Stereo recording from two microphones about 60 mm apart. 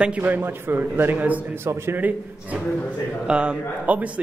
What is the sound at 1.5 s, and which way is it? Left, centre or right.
Speech, right.